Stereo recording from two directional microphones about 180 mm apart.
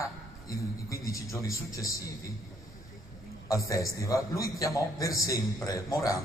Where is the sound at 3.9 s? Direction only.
20° left (ahead or behind).